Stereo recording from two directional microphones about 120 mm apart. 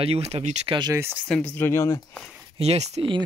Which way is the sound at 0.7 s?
40° right (ahead or behind).